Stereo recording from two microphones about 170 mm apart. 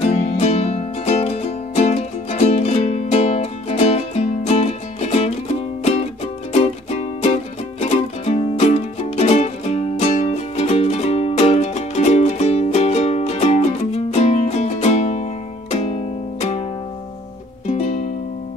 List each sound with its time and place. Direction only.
0.0 s music: 40° left (ahead or behind)
6.5 s music: 40° left (ahead or behind)
17.6 s music: 40° left (ahead or behind)